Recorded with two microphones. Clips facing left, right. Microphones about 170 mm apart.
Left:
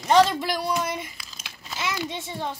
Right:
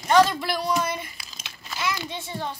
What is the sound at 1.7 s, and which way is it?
Child singing, 20° left (ahead or behind).